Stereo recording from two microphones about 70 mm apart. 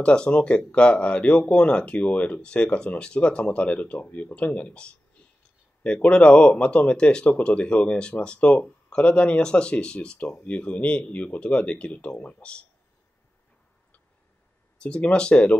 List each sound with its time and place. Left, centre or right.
0.0 s speech: centre
14.8 s speech: centre